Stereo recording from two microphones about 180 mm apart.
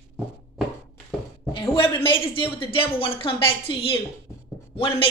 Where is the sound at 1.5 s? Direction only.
30° left (ahead or behind).